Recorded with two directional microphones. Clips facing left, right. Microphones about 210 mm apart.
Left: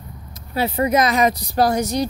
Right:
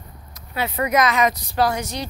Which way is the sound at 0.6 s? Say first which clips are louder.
Left 3 dB; 30° left (ahead or behind).